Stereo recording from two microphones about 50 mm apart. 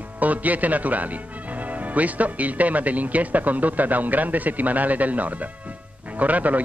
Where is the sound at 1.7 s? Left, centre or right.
Right.